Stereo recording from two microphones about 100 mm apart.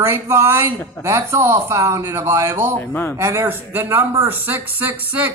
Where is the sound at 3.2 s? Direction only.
25° right (ahead or behind).